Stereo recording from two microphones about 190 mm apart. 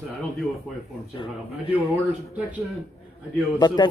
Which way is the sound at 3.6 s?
20° left (ahead or behind).